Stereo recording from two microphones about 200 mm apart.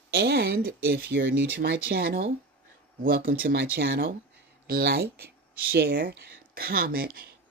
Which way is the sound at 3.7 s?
60° right (ahead or behind).